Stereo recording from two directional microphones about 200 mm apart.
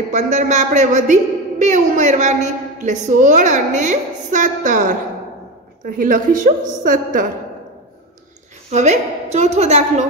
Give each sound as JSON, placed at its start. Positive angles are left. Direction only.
{"t": 0.1, "sound": "a man's voice", "side_deg": -35}
{"t": 8.7, "sound": "a man's voice", "side_deg": -35}